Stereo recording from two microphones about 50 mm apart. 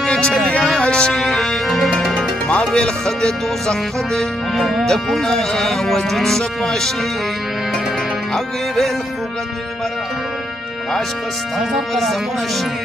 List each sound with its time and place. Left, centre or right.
0.0 s music: centre
2.1 s speech: centre
4.6 s speech: centre
4.8 s speech: centre
11.9 s speech: centre